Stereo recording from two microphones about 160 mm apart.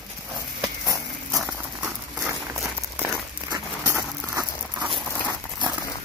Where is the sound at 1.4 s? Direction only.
5° right (ahead or behind).